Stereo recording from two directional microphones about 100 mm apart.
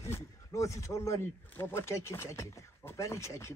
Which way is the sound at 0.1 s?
30° left (ahead or behind).